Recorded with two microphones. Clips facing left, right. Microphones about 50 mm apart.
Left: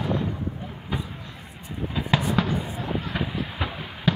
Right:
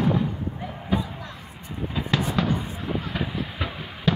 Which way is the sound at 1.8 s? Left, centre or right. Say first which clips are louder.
Even; centre.